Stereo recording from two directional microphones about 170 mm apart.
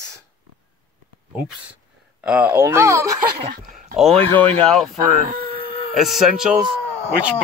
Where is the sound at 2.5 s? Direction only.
15° right (ahead or behind).